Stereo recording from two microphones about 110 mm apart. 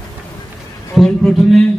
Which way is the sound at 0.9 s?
Centre (ahead or behind).